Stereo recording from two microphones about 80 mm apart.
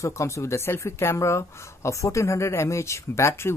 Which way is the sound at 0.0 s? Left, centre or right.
Left.